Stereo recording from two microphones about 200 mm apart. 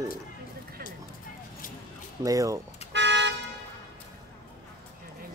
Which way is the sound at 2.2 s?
15° right (ahead or behind).